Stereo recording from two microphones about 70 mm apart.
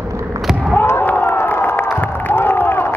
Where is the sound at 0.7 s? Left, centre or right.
Left.